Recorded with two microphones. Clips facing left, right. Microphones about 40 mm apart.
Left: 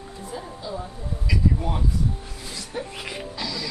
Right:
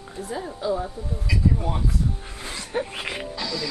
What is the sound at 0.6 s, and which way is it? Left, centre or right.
Speech, right.